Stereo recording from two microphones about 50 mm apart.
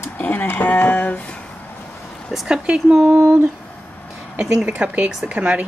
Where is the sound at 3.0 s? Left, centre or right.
Right.